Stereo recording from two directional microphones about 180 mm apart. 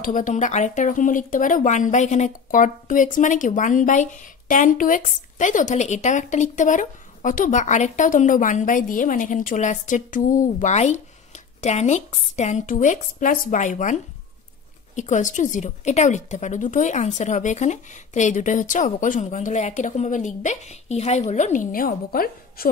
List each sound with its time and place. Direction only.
0.0 s speech: 45° left (ahead or behind)
15.0 s speech: 45° left (ahead or behind)